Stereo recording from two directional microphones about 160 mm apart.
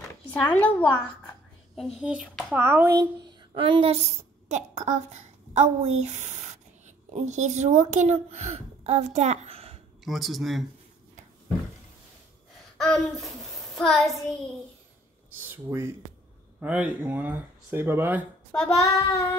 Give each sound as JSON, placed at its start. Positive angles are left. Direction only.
{"t": 0.0, "sound": "a sound", "side_deg": 10}
{"t": 2.0, "sound": "speech", "side_deg": -5}
{"t": 3.2, "sound": "a woman's voice", "side_deg": -30}
{"t": 10.0, "sound": "speech", "side_deg": 0}
{"t": 12.7, "sound": "child singing", "side_deg": 0}
{"t": 15.3, "sound": "a sound", "side_deg": -15}
{"t": 16.5, "sound": "speech", "side_deg": -10}
{"t": 18.5, "sound": "child singing", "side_deg": 5}
{"t": 18.8, "sound": "child singing", "side_deg": 20}